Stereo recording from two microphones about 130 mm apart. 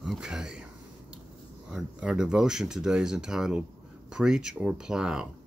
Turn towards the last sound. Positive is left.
turn(degrees=-5)  # may be behind; listen again after turning